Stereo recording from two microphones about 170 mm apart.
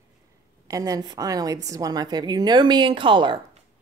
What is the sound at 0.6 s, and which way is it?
A woman's voice, 20° right (ahead or behind).